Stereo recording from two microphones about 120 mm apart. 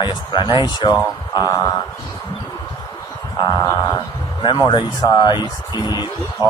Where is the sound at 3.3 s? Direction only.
35° left (ahead or behind).